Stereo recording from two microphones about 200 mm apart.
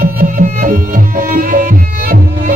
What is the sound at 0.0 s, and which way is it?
Music, 45° right (ahead or behind).